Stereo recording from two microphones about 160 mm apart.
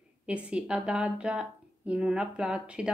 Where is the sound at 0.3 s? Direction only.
5° right (ahead or behind).